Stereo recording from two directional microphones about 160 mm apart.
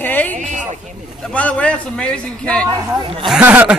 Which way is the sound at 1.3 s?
10° left (ahead or behind).